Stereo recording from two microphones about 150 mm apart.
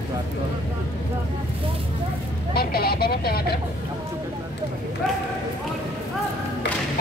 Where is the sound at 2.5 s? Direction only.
90° left.